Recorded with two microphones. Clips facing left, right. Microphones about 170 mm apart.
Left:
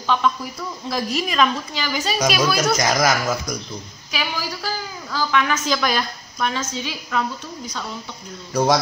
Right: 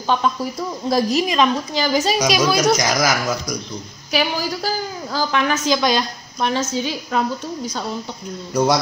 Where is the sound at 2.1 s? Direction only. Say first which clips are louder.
Right 2 dB; 20° right (ahead or behind).